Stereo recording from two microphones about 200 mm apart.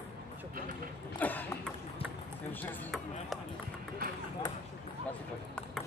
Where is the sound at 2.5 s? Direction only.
10° left (ahead or behind).